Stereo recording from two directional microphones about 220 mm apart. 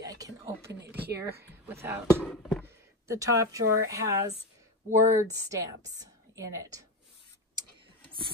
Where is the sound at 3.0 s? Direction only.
15° right (ahead or behind).